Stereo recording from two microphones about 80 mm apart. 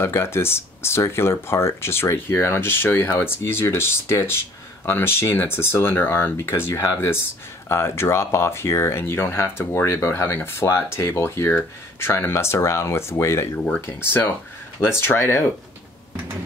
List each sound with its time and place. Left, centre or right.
0.0 s speech: left